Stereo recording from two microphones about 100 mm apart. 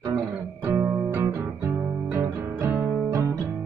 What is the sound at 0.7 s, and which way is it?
Music, 30° right (ahead or behind).